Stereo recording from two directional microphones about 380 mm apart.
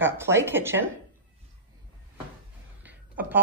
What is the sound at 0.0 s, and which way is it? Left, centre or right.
Speech, centre.